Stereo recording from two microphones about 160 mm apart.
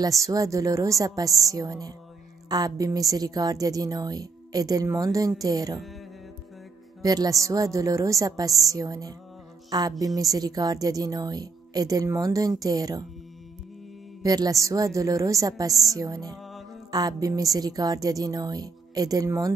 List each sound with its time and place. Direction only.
0.0 s a woman's voice: 20° right (ahead or behind)
7.0 s a woman's voice: 20° right (ahead or behind)
14.2 s a woman's voice: 25° right (ahead or behind)